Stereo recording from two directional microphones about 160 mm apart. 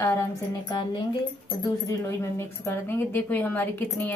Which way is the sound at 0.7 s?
30° left (ahead or behind).